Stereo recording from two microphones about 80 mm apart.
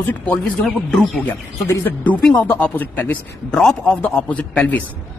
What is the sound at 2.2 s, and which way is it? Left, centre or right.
Speech, centre.